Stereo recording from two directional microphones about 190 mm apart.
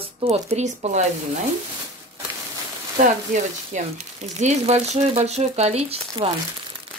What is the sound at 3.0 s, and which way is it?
Speech, 40° right (ahead or behind).